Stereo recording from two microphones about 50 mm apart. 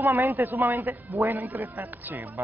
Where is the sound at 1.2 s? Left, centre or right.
Right.